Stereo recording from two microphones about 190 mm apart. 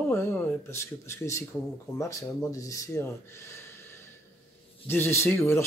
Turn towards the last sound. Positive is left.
turn(degrees=15)  # may be behind; listen again after turning